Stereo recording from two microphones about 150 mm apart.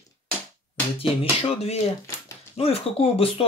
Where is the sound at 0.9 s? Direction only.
40° left (ahead or behind).